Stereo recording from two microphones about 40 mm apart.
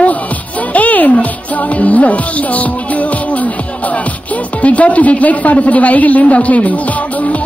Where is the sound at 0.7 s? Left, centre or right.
Left.